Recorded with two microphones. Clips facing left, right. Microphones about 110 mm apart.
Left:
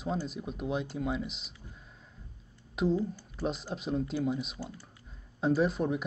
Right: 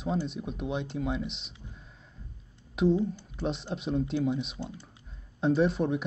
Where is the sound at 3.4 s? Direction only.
Centre (ahead or behind).